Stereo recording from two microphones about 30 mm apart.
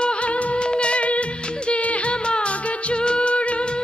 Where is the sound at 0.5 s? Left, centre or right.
Left.